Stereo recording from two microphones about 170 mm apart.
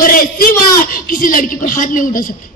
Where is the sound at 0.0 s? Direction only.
55° left (ahead or behind).